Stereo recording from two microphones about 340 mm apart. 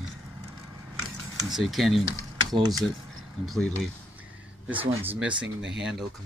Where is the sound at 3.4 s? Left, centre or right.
Centre.